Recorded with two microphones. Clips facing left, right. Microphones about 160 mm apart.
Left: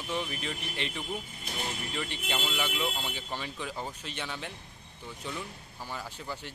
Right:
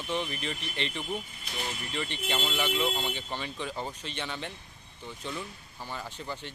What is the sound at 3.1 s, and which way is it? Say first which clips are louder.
Speech: right 2 dB; 5° left (ahead or behind).